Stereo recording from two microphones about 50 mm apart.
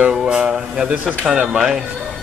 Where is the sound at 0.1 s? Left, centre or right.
Centre.